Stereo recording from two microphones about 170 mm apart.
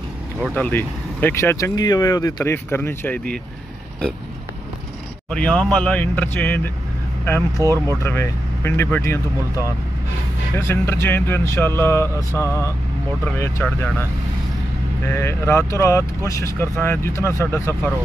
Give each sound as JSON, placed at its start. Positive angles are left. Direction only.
{"t": 0.6, "sound": "speech", "side_deg": 10}
{"t": 5.3, "sound": "speech", "side_deg": 5}
{"t": 7.6, "sound": "speech", "side_deg": -20}
{"t": 8.0, "sound": "speech", "side_deg": 15}
{"t": 10.5, "sound": "speech", "side_deg": 15}
{"t": 15.0, "sound": "speech", "side_deg": 15}